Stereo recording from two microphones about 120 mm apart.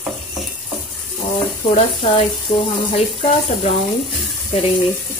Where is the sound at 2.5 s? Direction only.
45° left (ahead or behind).